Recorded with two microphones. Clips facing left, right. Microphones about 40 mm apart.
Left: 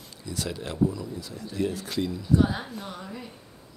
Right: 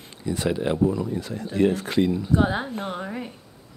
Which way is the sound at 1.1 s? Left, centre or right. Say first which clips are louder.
Right 8 dB; right.